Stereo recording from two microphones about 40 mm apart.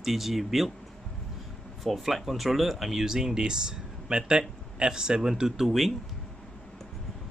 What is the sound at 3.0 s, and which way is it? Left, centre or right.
Speech, centre.